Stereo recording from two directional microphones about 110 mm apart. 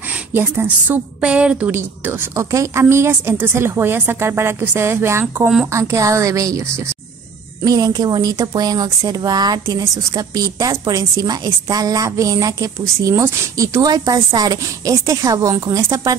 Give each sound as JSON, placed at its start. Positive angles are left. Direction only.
{"t": 0.1, "sound": "a woman's voice", "side_deg": -20}
{"t": 1.8, "sound": "a woman's voice", "side_deg": -20}